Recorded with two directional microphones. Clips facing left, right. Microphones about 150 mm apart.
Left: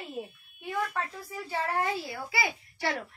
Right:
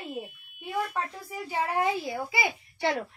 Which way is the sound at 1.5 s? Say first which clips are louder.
Right 3 dB; 15° right (ahead or behind).